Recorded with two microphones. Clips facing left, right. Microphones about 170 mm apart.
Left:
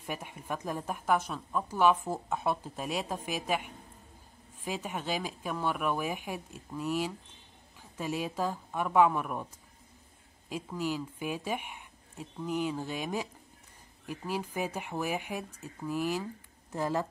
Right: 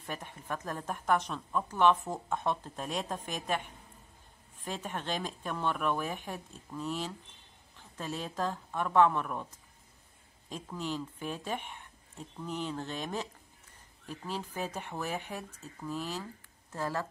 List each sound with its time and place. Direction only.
0.0 s a woman's voice: 10° left (ahead or behind)
10.5 s a woman's voice: 10° left (ahead or behind)